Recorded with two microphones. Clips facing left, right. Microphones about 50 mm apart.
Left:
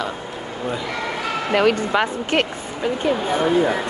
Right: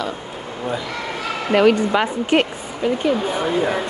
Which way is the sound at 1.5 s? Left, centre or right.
Right.